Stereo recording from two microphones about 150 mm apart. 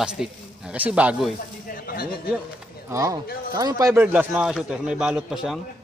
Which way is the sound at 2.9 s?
20° right (ahead or behind).